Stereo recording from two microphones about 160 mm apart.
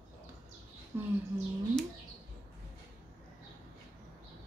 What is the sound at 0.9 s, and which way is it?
Speech, 15° right (ahead or behind).